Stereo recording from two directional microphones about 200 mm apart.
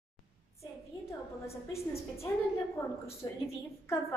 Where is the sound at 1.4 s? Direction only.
15° left (ahead or behind).